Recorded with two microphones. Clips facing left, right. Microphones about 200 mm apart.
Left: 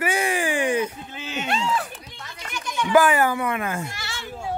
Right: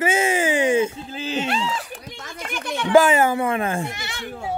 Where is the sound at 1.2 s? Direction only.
35° right (ahead or behind).